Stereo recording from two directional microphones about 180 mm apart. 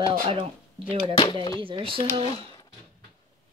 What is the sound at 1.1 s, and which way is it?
Speech, 25° left (ahead or behind).